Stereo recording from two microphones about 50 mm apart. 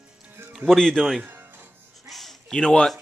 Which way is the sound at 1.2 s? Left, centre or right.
Right.